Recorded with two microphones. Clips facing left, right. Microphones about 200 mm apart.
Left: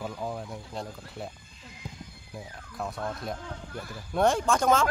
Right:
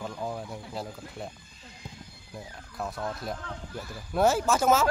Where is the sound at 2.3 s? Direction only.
Centre (ahead or behind).